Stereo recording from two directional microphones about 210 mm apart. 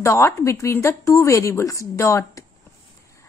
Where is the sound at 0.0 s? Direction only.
15° left (ahead or behind).